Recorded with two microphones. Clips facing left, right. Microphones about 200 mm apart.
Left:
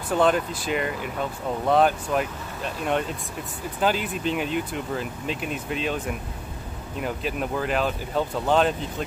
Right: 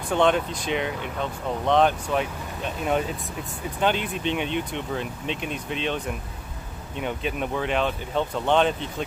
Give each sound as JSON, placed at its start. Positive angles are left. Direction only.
{"t": 0.1, "sound": "speech", "side_deg": 5}